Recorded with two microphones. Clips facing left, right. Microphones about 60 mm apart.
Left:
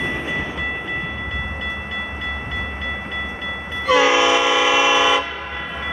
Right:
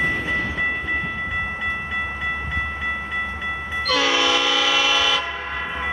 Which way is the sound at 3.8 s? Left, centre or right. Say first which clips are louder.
Left 6 dB; centre.